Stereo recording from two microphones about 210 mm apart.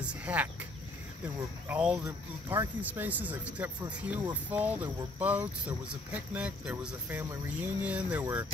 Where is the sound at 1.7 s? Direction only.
5° right (ahead or behind).